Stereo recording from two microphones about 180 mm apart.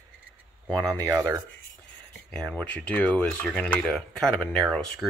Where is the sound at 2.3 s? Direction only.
5° left (ahead or behind).